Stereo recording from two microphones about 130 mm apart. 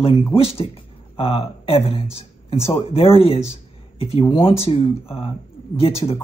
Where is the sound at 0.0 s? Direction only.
45° left (ahead or behind).